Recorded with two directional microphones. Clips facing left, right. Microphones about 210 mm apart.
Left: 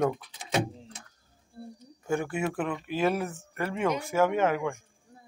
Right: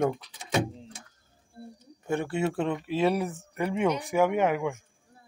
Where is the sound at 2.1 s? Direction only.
25° right (ahead or behind).